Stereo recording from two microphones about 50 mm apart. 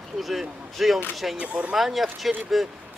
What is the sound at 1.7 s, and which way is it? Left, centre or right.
Speech, centre.